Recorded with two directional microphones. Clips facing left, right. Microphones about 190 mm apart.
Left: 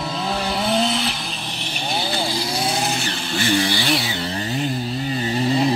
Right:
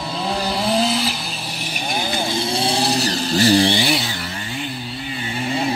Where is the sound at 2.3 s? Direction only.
30° right (ahead or behind).